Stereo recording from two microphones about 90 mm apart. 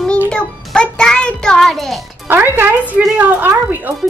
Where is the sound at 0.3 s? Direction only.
10° left (ahead or behind).